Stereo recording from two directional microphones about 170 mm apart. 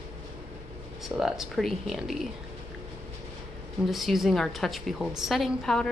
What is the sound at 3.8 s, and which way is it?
Speech, centre (ahead or behind).